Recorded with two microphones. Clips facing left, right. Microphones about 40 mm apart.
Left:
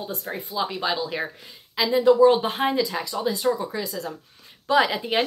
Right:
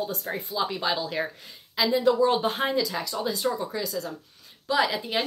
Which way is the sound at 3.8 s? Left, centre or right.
Left.